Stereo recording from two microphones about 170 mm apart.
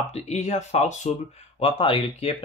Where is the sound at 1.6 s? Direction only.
35° left (ahead or behind).